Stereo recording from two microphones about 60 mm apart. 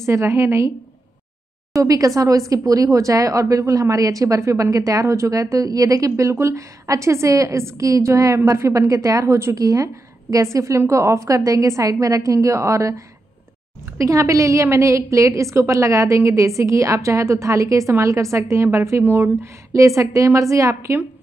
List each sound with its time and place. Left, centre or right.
0.0 s a woman's voice: right
1.8 s a woman's voice: right
4.4 s a woman's voice: right
9.6 s a woman's voice: right
10.3 s a woman's voice: right
20.0 s a woman's voice: right